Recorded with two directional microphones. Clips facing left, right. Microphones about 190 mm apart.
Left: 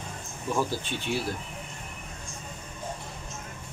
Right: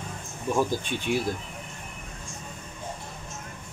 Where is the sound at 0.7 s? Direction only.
15° right (ahead or behind).